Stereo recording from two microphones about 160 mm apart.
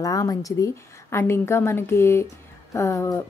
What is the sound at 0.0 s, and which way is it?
Speech, 20° left (ahead or behind).